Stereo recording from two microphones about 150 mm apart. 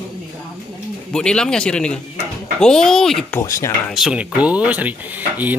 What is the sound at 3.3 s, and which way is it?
Speech, 20° left (ahead or behind).